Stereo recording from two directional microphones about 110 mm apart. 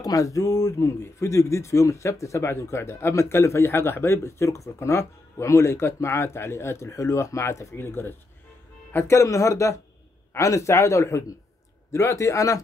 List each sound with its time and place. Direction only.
0.0 s speech: 30° left (ahead or behind)